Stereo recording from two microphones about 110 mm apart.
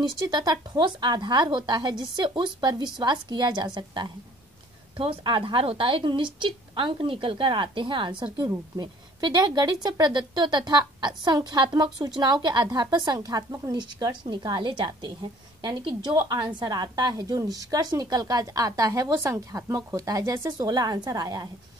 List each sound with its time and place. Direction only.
0.2 s speech: 40° right (ahead or behind)
4.9 s a woman's voice: 55° right (ahead or behind)
8.5 s a woman's voice: 35° right (ahead or behind)